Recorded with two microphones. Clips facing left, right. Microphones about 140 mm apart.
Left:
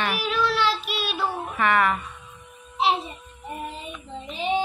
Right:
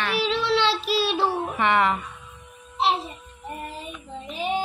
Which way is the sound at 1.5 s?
20° right (ahead or behind).